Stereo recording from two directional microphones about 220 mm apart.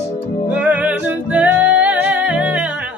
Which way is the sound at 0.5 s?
5° right (ahead or behind).